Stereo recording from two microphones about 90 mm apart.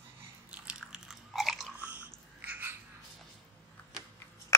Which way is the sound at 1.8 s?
15° right (ahead or behind).